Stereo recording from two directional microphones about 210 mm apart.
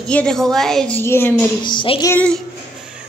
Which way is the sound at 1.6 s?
25° left (ahead or behind).